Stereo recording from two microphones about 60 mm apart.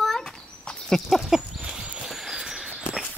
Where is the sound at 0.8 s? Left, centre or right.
Centre.